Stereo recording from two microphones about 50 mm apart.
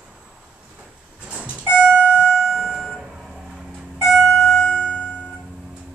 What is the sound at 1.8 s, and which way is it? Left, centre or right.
Keyboard, left.